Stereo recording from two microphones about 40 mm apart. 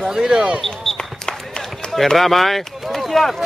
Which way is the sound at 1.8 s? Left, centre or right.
Centre.